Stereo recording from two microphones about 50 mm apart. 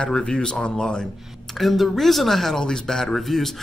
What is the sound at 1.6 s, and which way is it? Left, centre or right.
Speech, centre.